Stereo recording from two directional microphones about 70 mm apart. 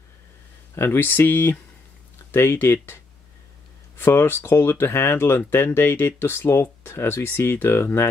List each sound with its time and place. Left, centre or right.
0.7 s speech: left